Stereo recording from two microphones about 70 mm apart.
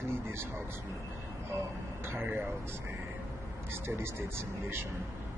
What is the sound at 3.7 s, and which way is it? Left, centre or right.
Speech, right.